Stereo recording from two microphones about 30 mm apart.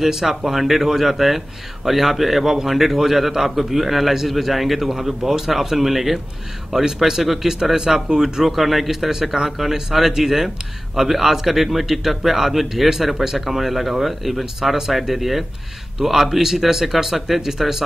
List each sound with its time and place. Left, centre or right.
0.0 s a man's voice: centre
6.7 s a man's voice: centre
8.5 s a man's voice: centre